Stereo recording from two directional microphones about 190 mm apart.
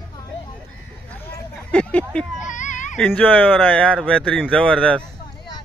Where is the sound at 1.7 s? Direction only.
5° left (ahead or behind).